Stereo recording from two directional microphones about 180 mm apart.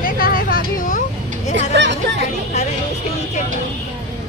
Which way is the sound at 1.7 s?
75° right (ahead or behind).